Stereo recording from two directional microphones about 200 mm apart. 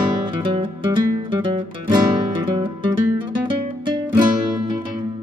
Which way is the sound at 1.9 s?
20° right (ahead or behind).